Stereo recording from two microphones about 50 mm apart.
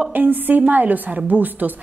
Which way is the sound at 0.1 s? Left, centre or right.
Right.